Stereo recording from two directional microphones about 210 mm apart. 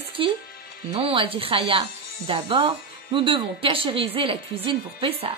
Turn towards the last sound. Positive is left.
turn(degrees=-25)  # may be behind; listen again after turning